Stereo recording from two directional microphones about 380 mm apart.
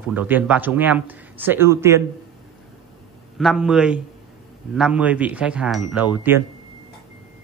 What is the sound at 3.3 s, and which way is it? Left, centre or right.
Speech, centre.